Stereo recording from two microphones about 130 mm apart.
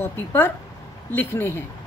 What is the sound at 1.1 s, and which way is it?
Speech, 15° left (ahead or behind).